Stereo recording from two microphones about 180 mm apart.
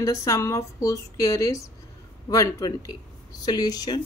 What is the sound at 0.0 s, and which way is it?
A woman's voice, 20° left (ahead or behind).